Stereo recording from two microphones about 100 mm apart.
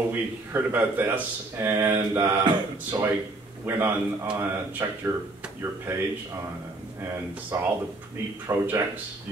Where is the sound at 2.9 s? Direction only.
25° right (ahead or behind).